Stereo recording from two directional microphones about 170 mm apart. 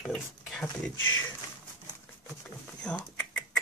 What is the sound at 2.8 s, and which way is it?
Typing, 5° left (ahead or behind).